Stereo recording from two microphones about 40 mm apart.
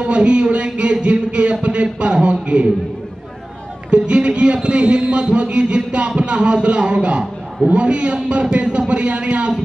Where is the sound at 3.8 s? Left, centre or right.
Right.